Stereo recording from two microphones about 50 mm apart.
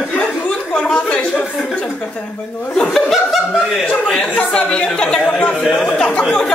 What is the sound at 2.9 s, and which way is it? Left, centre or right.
Speech, centre.